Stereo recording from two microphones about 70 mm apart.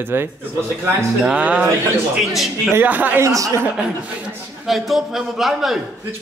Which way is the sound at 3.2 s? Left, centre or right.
Right.